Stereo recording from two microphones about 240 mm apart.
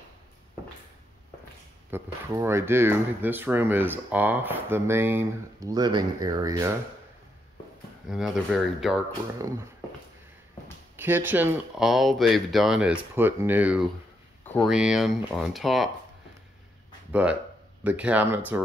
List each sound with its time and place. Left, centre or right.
1.9 s speech: centre
8.1 s speech: centre
11.0 s speech: centre
14.4 s speech: centre
17.1 s speech: centre